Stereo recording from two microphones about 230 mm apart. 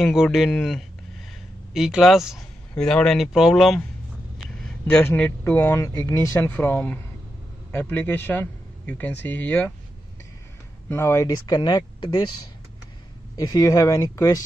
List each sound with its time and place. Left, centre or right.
0.0 s a man's voice: centre
10.9 s a man's voice: centre
13.4 s a man's voice: centre